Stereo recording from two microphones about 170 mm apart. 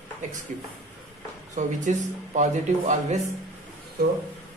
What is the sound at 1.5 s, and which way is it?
Speech, 45° right (ahead or behind).